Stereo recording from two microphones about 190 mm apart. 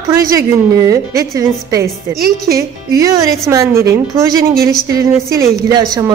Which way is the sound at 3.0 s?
15° right (ahead or behind).